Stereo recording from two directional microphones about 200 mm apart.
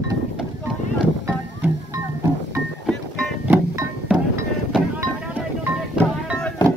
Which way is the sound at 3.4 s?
10° right (ahead or behind).